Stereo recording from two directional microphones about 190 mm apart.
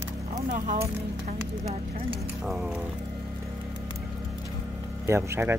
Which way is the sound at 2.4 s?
Centre (ahead or behind).